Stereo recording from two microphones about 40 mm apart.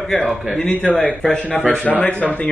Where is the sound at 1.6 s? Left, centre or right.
Left.